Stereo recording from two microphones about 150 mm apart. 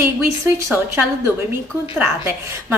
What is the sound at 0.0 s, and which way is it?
A woman's voice, 20° right (ahead or behind).